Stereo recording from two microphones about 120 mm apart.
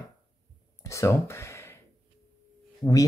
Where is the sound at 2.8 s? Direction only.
30° left (ahead or behind).